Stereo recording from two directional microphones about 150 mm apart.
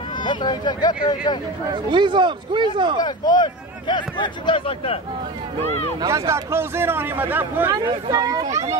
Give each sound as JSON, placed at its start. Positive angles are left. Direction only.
{"t": 0.2, "sound": "speech", "side_deg": 30}
{"t": 1.7, "sound": "speech", "side_deg": -30}
{"t": 3.0, "sound": "speech", "side_deg": 30}
{"t": 5.9, "sound": "speech", "side_deg": -20}
{"t": 7.7, "sound": "speech", "side_deg": -25}